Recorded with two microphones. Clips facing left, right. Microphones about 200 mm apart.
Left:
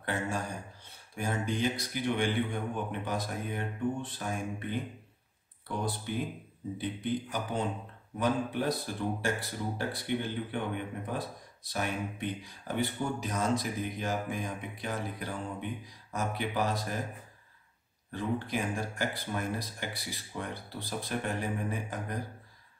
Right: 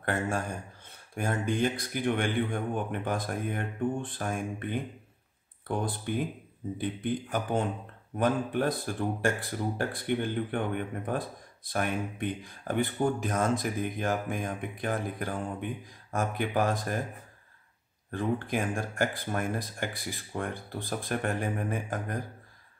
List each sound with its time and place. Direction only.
0.0 s speech: 50° right (ahead or behind)
6.1 s speech: 55° right (ahead or behind)
18.1 s speech: 50° right (ahead or behind)